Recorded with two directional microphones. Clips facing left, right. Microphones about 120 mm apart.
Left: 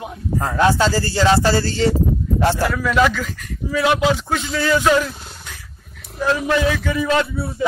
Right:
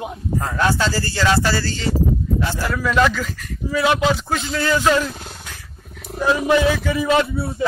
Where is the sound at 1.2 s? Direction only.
30° left (ahead or behind).